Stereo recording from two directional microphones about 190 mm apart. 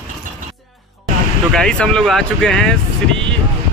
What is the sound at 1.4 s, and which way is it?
Speech, 5° left (ahead or behind).